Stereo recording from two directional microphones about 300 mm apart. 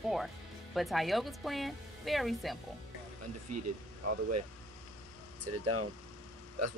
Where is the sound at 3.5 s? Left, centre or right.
Right.